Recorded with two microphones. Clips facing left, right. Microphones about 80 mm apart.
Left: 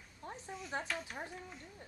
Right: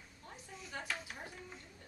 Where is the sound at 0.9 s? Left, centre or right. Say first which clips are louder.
Left 2 dB; centre.